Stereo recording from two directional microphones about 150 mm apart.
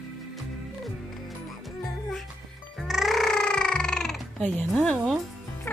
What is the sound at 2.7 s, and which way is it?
Cat, centre (ahead or behind).